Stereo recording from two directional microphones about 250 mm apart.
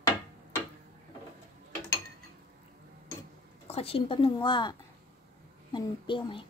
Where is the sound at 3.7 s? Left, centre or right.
Left.